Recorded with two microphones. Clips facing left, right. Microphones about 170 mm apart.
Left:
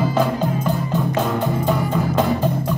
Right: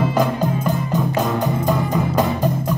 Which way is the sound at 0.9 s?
15° right (ahead or behind).